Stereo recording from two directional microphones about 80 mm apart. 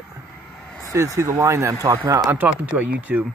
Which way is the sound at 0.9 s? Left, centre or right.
Right.